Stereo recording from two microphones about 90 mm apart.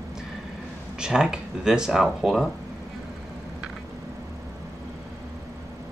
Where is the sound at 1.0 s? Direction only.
10° right (ahead or behind).